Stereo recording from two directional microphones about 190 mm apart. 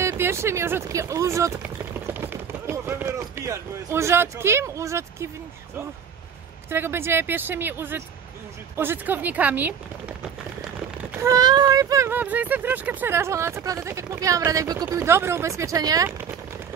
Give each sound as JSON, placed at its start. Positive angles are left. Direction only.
{"t": 0.0, "sound": "speech", "side_deg": -15}
{"t": 6.7, "sound": "speech", "side_deg": -10}